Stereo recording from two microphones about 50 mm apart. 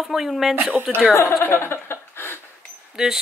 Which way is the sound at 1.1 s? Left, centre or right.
Left.